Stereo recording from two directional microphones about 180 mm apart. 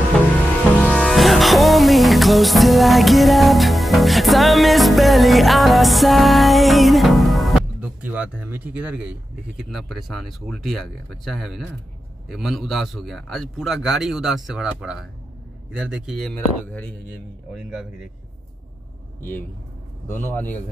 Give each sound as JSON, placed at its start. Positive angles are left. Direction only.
{"t": 0.7, "sound": "music", "side_deg": 5}
{"t": 9.6, "sound": "a man's voice", "side_deg": 0}
{"t": 20.1, "sound": "speech", "side_deg": 10}